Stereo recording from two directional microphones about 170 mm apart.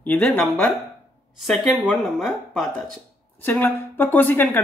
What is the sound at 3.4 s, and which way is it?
Speech, 10° left (ahead or behind).